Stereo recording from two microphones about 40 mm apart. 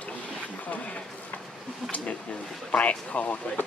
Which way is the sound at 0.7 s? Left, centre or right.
Left.